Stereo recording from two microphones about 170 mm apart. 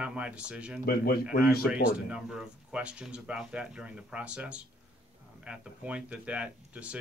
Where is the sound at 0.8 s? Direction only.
65° left (ahead or behind).